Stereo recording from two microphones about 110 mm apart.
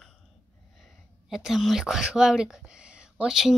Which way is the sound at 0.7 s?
Centre (ahead or behind).